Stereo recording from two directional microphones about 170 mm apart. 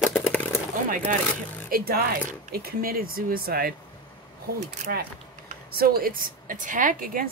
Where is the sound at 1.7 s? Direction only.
60° right (ahead or behind).